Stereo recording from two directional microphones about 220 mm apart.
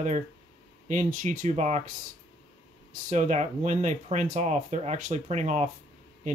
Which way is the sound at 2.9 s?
35° right (ahead or behind).